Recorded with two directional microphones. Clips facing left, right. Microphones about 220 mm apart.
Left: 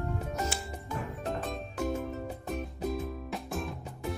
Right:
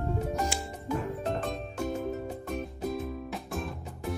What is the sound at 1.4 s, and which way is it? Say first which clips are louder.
Music: right 1 dB; centre (ahead or behind).